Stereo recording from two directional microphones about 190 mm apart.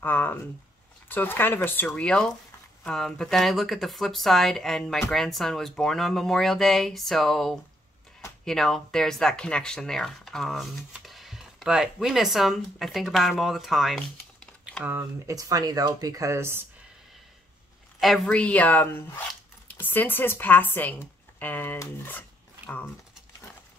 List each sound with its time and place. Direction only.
0.0 s speech: 10° left (ahead or behind)
14.9 s speech: 15° right (ahead or behind)
18.0 s speech: centre (ahead or behind)